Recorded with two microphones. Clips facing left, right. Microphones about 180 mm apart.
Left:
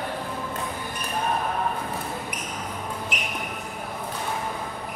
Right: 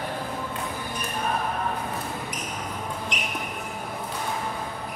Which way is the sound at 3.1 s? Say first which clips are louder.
Even; 5° left (ahead or behind).